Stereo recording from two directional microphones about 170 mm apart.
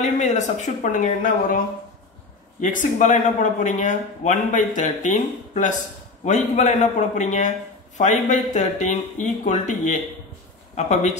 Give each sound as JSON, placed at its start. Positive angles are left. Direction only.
{"t": 0.0, "sound": "speech", "side_deg": 45}
{"t": 2.6, "sound": "speech", "side_deg": 45}